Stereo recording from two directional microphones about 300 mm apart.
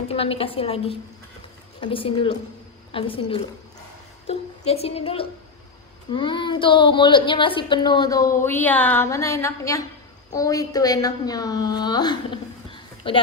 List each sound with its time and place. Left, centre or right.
0.1 s a woman's voice: centre